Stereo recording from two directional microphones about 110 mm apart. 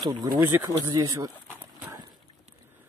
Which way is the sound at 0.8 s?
35° right (ahead or behind).